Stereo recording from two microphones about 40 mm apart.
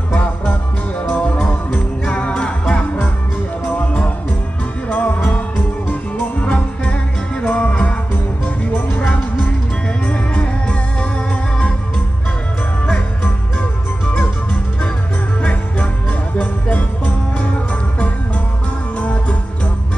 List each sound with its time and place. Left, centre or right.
1.0 s music: left
3.7 s music: left
6.4 s music: left
8.9 s music: left
10.0 s music: left
14.0 s music: left
16.3 s music: left
18.9 s music: left